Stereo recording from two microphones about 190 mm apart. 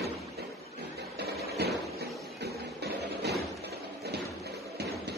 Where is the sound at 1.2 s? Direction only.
55° right (ahead or behind).